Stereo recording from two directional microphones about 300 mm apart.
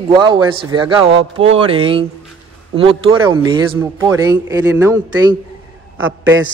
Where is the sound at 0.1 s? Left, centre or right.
Centre.